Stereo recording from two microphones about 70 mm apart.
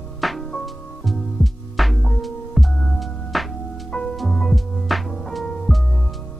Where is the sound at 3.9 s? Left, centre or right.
Centre.